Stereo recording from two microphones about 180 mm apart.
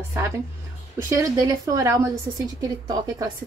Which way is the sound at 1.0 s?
15° right (ahead or behind).